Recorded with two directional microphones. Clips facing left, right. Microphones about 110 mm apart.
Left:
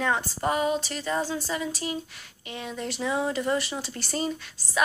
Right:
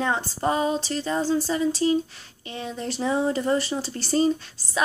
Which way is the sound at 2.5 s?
30° right (ahead or behind).